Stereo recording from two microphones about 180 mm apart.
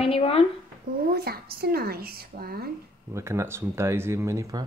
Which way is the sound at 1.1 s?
60° right (ahead or behind).